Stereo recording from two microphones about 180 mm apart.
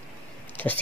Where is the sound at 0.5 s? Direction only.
10° left (ahead or behind).